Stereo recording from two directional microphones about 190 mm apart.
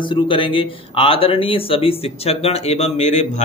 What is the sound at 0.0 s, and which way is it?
Speech, 25° left (ahead or behind).